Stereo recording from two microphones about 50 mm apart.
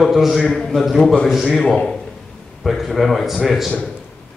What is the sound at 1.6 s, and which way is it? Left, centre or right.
Speech, centre.